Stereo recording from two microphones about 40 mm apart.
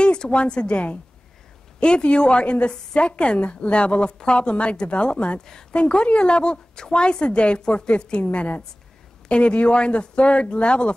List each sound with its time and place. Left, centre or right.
0.0 s a woman's voice: left